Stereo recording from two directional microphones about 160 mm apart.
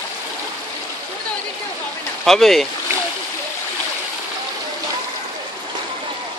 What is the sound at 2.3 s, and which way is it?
Speech, centre (ahead or behind).